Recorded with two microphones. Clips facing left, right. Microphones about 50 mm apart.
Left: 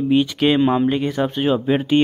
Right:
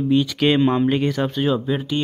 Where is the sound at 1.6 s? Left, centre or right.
Left.